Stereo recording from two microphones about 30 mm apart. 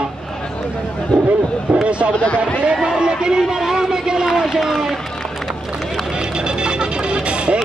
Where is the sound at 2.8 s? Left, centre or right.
Right.